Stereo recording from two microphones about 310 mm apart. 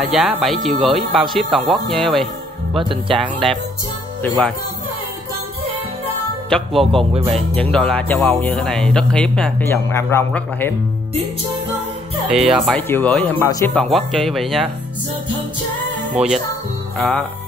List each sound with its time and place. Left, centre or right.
0.1 s speech: centre
2.8 s speech: centre
4.2 s speech: centre
6.5 s speech: centre
12.3 s speech: centre
16.9 s speech: centre